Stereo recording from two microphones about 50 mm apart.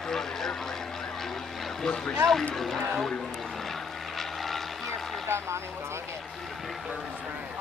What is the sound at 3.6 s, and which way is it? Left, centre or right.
Vehicle, centre.